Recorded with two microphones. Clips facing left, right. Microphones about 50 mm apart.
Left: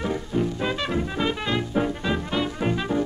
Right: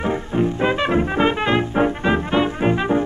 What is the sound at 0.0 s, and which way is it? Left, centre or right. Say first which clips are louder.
Music: right 5 dB; right.